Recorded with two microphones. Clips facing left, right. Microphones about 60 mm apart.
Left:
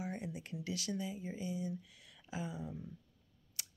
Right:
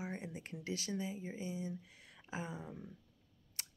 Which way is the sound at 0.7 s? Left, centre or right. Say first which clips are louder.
Even; right.